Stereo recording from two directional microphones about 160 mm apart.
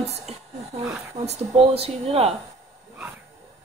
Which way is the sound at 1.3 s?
40° right (ahead or behind).